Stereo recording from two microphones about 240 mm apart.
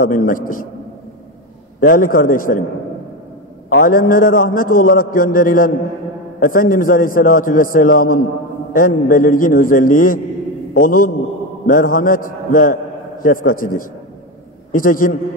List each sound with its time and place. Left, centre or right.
0.0 s a man's voice: left
1.8 s a man's voice: left
3.7 s a man's voice: left